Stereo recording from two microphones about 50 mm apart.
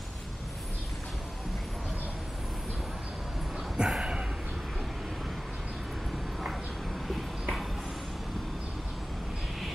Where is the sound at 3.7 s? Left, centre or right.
Centre.